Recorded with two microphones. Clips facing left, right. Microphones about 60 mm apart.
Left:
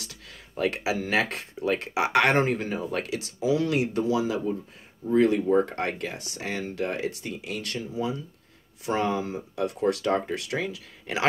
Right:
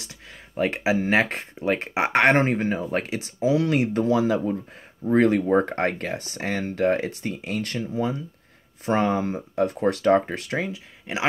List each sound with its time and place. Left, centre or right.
0.0 s speech: right